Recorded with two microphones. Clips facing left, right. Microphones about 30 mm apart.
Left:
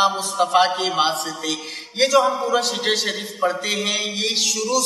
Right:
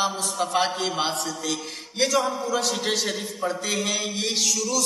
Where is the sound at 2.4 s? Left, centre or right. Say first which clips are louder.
Left 4 dB; left.